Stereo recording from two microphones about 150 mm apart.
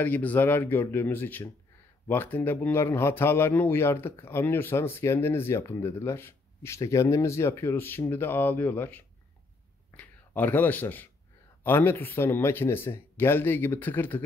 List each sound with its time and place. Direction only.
0.0 s speech: 10° left (ahead or behind)
9.8 s a sound: 10° left (ahead or behind)
11.6 s speech: 15° left (ahead or behind)